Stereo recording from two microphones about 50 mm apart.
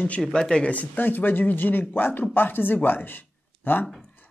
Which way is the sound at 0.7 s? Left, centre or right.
Left.